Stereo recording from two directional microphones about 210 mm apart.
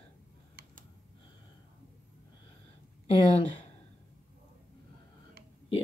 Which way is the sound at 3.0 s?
25° left (ahead or behind).